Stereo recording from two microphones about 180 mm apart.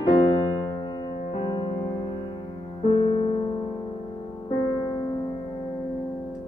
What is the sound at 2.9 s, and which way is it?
Music, 30° left (ahead or behind).